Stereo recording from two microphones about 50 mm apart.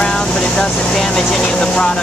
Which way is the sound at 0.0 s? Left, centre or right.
Centre.